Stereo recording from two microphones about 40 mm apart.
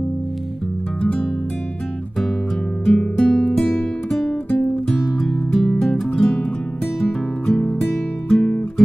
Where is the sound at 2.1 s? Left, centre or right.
Centre.